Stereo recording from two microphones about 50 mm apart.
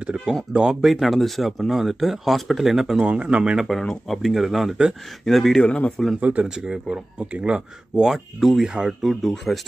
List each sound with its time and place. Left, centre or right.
0.0 s speech: right
0.7 s speech: centre
3.0 s speech: right
3.8 s speech: centre
4.2 s speech: centre
5.6 s a man's voice: left
6.4 s speech: centre
8.1 s speech: centre
8.6 s speech: centre
9.0 s speech: centre